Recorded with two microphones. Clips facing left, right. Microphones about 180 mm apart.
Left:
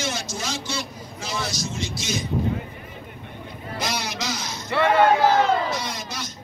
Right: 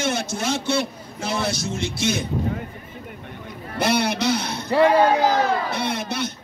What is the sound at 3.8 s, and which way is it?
Speech, 60° right (ahead or behind).